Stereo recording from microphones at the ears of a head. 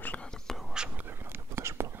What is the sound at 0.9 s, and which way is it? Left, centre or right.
Whispering, right.